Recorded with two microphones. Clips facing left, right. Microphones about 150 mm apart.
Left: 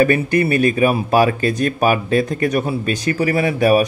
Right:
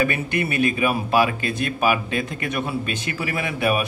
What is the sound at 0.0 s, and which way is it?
Speech, 40° left (ahead or behind).